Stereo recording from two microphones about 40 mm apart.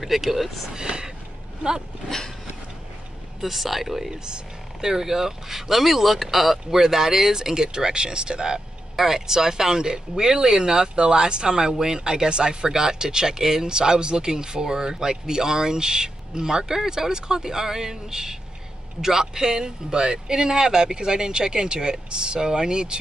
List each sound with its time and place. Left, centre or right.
0.0 s speech: centre
0.7 s a man's voice: right
2.0 s a sound: centre
3.3 s speech: centre
8.9 s a man's voice: centre